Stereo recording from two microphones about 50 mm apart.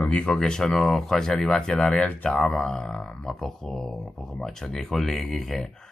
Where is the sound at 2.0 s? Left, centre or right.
Left.